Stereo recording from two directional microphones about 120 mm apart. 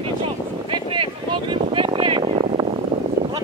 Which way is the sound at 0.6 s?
45° right (ahead or behind).